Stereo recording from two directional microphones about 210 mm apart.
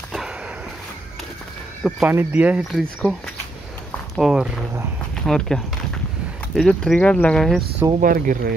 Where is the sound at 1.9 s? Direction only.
5° right (ahead or behind).